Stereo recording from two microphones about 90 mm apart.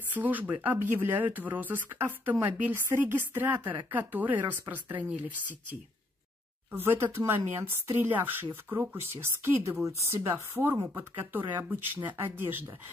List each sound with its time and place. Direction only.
0.1 s a woman's voice: 20° right (ahead or behind)